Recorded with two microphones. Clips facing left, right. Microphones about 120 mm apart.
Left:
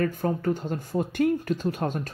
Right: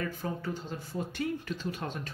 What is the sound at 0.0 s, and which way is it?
Speech, 50° left (ahead or behind).